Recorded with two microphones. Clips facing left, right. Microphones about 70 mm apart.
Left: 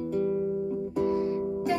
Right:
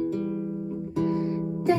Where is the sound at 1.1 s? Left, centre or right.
Right.